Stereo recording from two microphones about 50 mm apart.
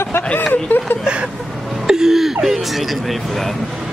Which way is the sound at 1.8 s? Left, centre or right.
Centre.